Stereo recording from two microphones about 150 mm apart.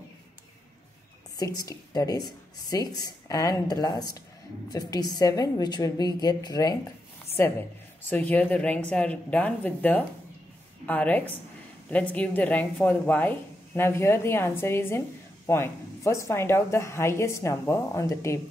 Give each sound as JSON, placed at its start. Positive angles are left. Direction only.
{"t": 1.4, "sound": "speech", "side_deg": 25}
{"t": 8.1, "sound": "a woman's voice", "side_deg": 10}